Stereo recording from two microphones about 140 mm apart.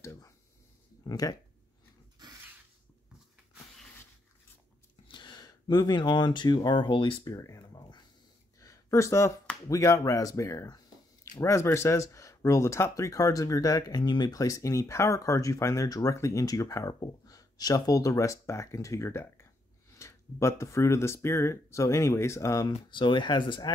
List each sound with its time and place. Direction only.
0.0 s a sound: 20° left (ahead or behind)
1.0 s speech: 25° left (ahead or behind)
5.0 s speech: 35° left (ahead or behind)
8.5 s a sound: 20° left (ahead or behind)
9.7 s speech: 25° left (ahead or behind)
22.8 s speech: 35° left (ahead or behind)